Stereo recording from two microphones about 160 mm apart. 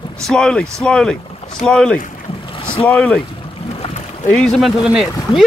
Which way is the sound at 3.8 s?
40° left (ahead or behind).